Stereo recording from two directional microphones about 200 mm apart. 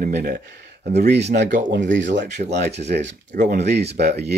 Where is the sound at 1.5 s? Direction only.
40° right (ahead or behind).